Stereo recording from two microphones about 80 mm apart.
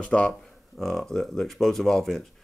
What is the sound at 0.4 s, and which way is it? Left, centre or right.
Speech, centre.